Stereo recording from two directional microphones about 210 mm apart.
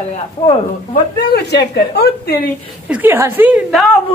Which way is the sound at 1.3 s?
50° left (ahead or behind).